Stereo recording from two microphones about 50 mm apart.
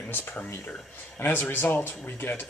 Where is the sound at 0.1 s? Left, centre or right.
Left.